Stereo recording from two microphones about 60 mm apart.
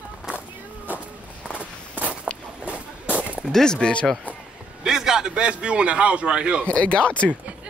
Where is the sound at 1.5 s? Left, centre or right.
Right.